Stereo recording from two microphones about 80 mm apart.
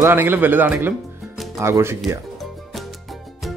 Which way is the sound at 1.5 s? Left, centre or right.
Right.